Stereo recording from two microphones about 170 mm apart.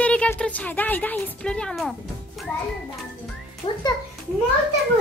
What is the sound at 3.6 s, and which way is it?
Speech, 30° left (ahead or behind).